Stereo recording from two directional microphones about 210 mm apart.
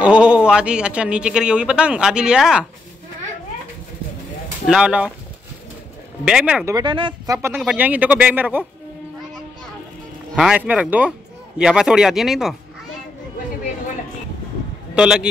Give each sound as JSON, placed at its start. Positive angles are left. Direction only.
{"t": 0.0, "sound": "speech", "side_deg": -5}
{"t": 4.6, "sound": "speech", "side_deg": -5}
{"t": 6.2, "sound": "speech", "side_deg": -5}
{"t": 7.4, "sound": "speech", "side_deg": -5}
{"t": 10.3, "sound": "speech", "side_deg": -5}
{"t": 15.0, "sound": "speech", "side_deg": -5}